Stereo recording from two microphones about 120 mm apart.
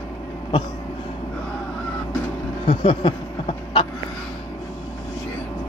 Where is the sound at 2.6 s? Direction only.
45° left (ahead or behind).